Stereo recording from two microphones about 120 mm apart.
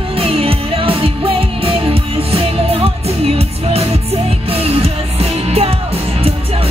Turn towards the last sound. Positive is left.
turn(degrees=-55)  # may be behind; listen again after turning